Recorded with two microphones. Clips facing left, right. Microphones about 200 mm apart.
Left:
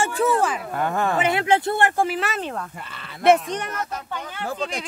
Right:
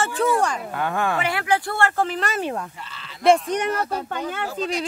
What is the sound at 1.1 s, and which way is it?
Speech, 20° left (ahead or behind).